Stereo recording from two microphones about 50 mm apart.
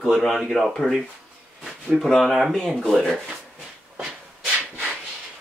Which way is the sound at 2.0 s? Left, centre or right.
Centre.